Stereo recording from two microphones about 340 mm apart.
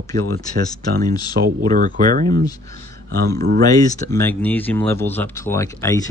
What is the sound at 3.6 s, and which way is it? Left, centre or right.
Speech, centre.